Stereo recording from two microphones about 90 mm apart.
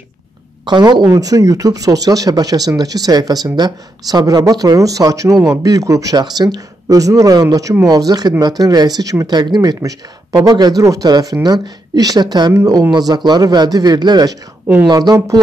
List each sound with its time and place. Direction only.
0.7 s speech: 55° right (ahead or behind)
1.0 s speech: 40° right (ahead or behind)
9.3 s speech: 50° right (ahead or behind)